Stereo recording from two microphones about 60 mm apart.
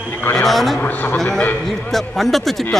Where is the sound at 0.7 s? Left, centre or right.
Left.